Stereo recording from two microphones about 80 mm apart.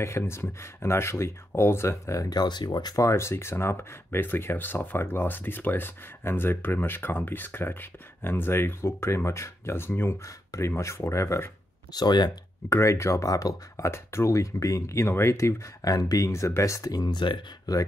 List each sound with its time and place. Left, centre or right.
0.0 s speech: left
2.2 s speech: left
3.0 s speech: left
11.9 s speech: left
12.6 s speech: left
17.1 s speech: left
17.7 s speech: left